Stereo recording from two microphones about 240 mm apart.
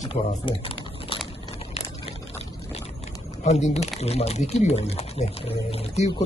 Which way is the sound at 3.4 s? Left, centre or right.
Left.